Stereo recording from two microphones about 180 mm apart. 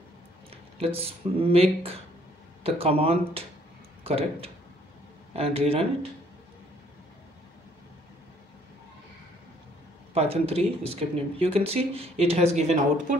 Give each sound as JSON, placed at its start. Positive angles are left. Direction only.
{"t": 0.7, "sound": "speech", "side_deg": -35}
{"t": 10.1, "sound": "speech", "side_deg": -35}